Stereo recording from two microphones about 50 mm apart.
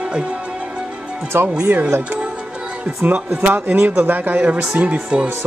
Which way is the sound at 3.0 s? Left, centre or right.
Right.